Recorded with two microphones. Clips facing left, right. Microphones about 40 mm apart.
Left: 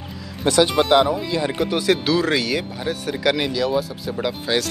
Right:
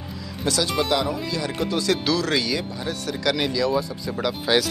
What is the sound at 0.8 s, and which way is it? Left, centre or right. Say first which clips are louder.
Speech: left 7 dB; left.